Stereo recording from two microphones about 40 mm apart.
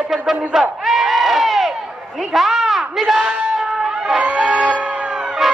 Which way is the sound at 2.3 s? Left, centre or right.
Centre.